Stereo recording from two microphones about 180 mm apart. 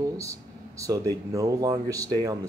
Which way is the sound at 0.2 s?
15° right (ahead or behind).